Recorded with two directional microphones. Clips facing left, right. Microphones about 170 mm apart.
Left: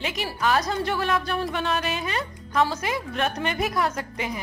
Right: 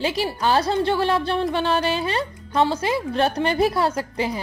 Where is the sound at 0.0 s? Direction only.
30° right (ahead or behind).